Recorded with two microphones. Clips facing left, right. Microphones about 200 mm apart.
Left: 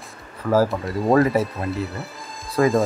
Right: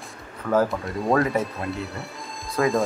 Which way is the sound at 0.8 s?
Centre (ahead or behind).